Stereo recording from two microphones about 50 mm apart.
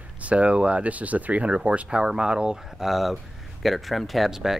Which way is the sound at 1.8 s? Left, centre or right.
Centre.